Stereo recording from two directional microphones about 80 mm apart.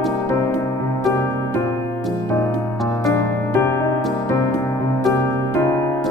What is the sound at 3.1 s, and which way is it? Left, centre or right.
Music, left.